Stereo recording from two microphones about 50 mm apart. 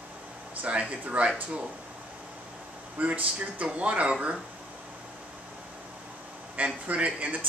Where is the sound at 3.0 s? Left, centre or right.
Right.